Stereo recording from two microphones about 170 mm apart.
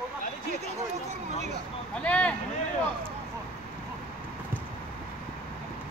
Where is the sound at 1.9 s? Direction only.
5° left (ahead or behind).